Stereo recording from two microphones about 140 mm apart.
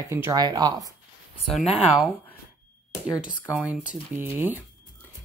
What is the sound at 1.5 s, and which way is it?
Speech, centre (ahead or behind).